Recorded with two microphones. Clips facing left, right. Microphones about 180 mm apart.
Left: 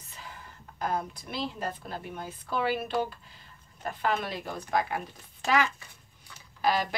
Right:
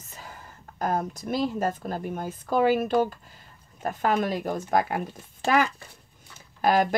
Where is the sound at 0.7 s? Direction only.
45° right (ahead or behind).